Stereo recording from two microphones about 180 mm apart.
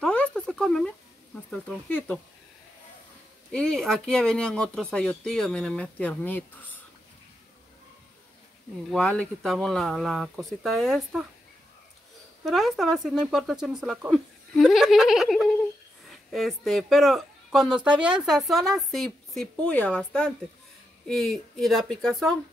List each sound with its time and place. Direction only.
0.0 s a sound: 5° left (ahead or behind)
1.5 s speech: 5° left (ahead or behind)
3.5 s speech: 5° left (ahead or behind)
8.9 s speech: 5° left (ahead or behind)
12.4 s speech: centre (ahead or behind)